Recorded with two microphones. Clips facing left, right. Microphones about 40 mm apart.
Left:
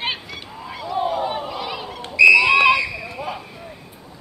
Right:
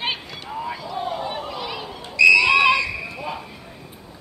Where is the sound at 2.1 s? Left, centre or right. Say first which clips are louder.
Left 2 dB; centre.